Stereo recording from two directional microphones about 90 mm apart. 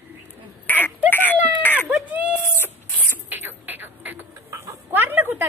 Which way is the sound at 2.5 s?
25° left (ahead or behind).